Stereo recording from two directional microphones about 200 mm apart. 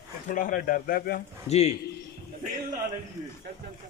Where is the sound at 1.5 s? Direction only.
35° left (ahead or behind).